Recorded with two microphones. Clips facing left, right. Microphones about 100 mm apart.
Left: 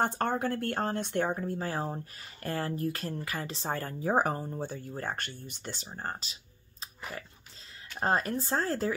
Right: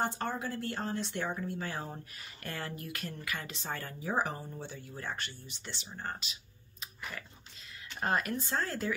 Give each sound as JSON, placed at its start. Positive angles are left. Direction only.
{"t": 0.0, "sound": "speech", "side_deg": 50}
{"t": 6.8, "sound": "biting", "side_deg": 35}
{"t": 8.0, "sound": "speech", "side_deg": 35}